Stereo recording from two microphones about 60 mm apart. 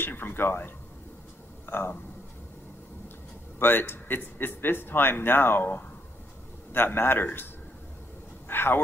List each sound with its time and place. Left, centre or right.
0.0 s a man's voice: left
1.7 s speech: left
3.5 s a man's voice: left
8.5 s a man's voice: left